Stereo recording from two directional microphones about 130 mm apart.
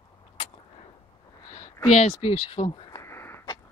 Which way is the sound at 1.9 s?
55° left (ahead or behind).